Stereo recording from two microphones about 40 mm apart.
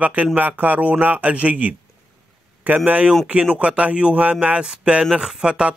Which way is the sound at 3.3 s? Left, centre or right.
Right.